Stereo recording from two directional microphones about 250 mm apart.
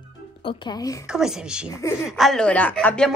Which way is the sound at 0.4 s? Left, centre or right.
Centre.